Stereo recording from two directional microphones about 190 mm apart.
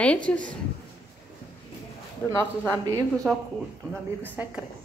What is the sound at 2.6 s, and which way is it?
Speech, 15° right (ahead or behind).